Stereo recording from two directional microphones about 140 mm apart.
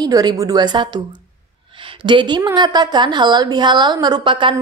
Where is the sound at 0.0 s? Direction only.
30° right (ahead or behind).